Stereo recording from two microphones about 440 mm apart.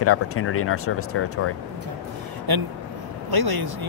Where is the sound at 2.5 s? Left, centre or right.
Right.